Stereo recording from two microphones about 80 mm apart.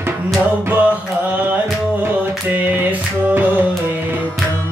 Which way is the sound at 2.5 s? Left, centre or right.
Right.